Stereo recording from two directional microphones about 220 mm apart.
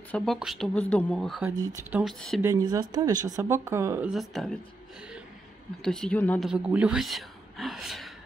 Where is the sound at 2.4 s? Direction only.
15° right (ahead or behind).